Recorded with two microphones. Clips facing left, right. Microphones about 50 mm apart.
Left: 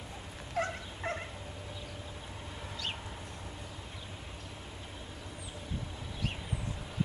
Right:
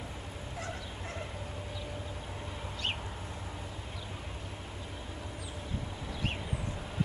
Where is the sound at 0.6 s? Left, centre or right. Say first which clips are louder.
Left 8 dB; left.